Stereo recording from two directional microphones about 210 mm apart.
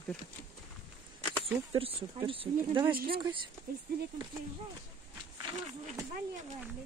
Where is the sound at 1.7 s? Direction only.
25° right (ahead or behind).